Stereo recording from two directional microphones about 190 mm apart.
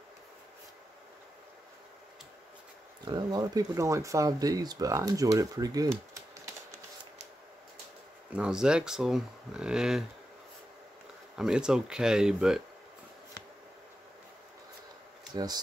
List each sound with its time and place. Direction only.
3.1 s speech: 20° right (ahead or behind)
8.4 s speech: 5° right (ahead or behind)
11.3 s speech: 5° right (ahead or behind)
15.3 s speech: 20° right (ahead or behind)